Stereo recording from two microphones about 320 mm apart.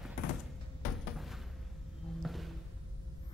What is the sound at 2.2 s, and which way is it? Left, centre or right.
Music, centre.